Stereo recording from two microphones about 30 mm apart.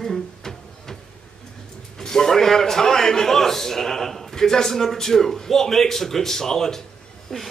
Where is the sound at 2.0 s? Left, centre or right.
Centre.